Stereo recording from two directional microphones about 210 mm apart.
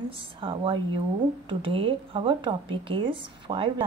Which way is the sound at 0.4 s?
25° right (ahead or behind).